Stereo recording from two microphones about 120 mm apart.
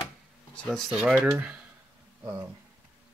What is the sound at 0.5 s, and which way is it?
Speech, 10° left (ahead or behind).